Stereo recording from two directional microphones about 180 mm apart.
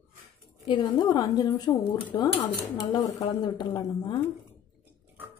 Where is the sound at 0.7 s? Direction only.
25° left (ahead or behind).